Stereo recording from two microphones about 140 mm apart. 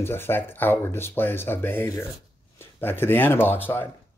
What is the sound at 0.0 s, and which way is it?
Speech, 15° left (ahead or behind).